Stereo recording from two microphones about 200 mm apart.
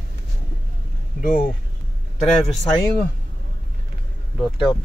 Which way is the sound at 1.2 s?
40° left (ahead or behind).